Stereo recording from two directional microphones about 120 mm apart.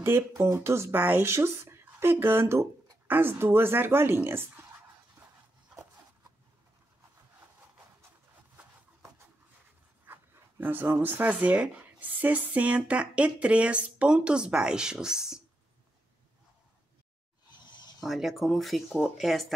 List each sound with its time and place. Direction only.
0.0 s speech: 20° right (ahead or behind)
5.2 s dog: 15° right (ahead or behind)
10.0 s speech: 15° right (ahead or behind)
18.0 s speech: centre (ahead or behind)